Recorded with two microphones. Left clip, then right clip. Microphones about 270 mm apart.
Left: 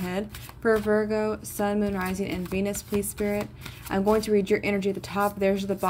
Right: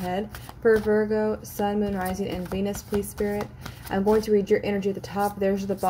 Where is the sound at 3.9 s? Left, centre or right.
Left.